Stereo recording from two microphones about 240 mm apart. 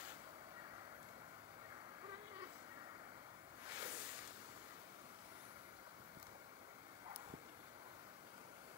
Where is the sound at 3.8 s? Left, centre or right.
Centre.